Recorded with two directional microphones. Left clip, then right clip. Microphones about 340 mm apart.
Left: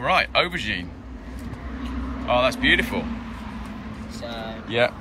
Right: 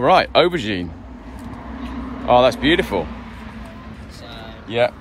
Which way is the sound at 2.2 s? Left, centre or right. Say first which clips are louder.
Right 6 dB; centre.